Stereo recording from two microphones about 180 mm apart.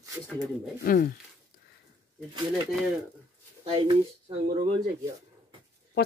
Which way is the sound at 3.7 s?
25° right (ahead or behind).